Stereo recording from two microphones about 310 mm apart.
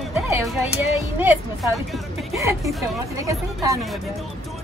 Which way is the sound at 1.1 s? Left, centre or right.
Centre.